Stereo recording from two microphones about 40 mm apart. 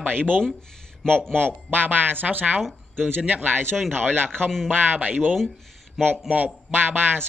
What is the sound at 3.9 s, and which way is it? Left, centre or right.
Speech, right.